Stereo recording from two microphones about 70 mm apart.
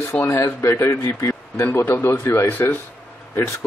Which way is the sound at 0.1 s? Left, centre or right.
Centre.